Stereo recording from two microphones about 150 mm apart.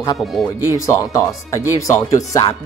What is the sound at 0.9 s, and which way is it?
A man's voice, 20° left (ahead or behind).